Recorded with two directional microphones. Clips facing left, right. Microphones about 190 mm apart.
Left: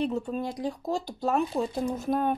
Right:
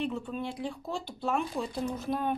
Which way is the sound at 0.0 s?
40° left (ahead or behind).